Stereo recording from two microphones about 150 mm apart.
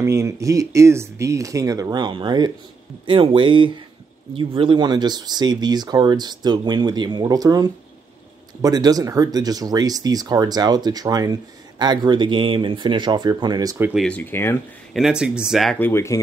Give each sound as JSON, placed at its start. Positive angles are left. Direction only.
{"t": 0.0, "sound": "speech", "side_deg": -20}
{"t": 13.9, "sound": "speech", "side_deg": 10}
{"t": 15.0, "sound": "speech", "side_deg": -5}
{"t": 15.8, "sound": "speech", "side_deg": 15}